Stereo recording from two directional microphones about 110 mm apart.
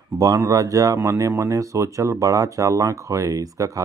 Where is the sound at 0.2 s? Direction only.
30° right (ahead or behind).